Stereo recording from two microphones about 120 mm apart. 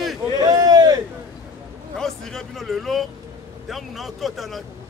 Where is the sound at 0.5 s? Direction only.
30° right (ahead or behind).